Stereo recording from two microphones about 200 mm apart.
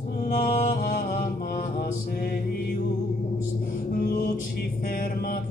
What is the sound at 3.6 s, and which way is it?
Music, 45° left (ahead or behind).